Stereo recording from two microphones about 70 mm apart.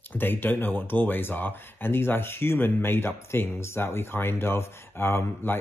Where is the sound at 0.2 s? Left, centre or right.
Left.